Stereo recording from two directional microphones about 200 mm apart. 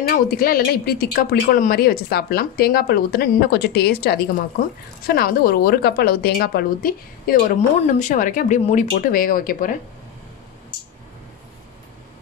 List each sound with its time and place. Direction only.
0.1 s speech: 45° left (ahead or behind)